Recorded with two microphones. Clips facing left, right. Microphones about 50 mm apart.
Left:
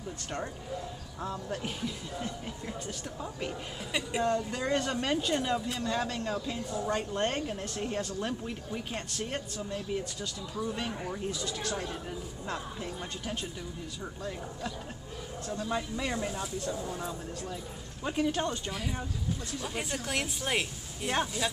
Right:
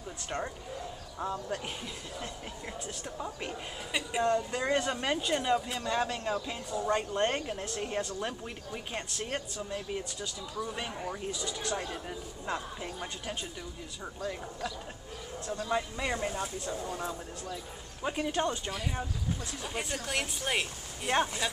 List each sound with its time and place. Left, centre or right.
1.2 s a woman's voice: centre
15.7 s a woman's voice: centre
16.2 s speech: right
18.0 s a woman's voice: centre